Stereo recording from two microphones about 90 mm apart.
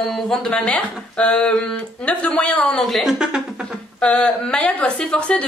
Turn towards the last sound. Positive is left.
turn(degrees=10)  # may be behind; listen again after turning